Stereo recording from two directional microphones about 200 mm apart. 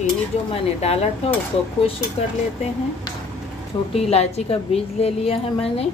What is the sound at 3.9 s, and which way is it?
A woman's voice, 30° left (ahead or behind).